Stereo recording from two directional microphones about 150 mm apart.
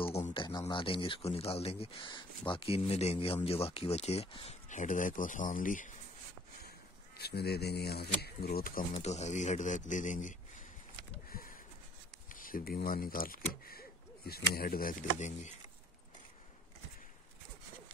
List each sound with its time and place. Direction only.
0.0 s speech: 40° left (ahead or behind)
4.6 s speech: 55° left (ahead or behind)
7.2 s speech: 90° left
8.9 s speech: 50° left (ahead or behind)
11.2 s a sound: 70° left (ahead or behind)
12.4 s speech: 70° left (ahead or behind); by 15.5 s 55° left (ahead or behind)